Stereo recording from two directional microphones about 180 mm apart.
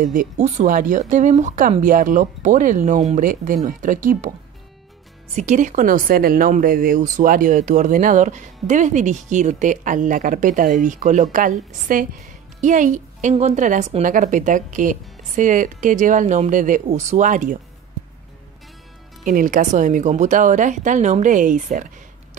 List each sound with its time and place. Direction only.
0.0 s speech: 45° right (ahead or behind)
5.3 s speech: 45° right (ahead or behind)
19.2 s speech: 45° right (ahead or behind)